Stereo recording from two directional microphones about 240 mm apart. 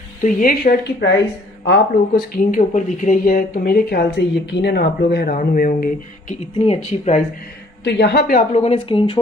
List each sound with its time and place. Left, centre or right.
0.2 s speech: left
7.8 s speech: left
8.6 s speech: left